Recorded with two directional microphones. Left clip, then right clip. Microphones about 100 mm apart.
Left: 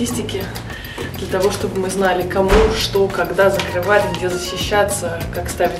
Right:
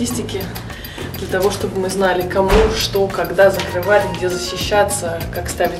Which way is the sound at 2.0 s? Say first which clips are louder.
Right 1 dB; 10° right (ahead or behind).